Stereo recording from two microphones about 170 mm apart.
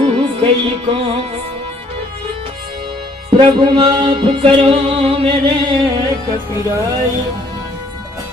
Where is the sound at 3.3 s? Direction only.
30° right (ahead or behind).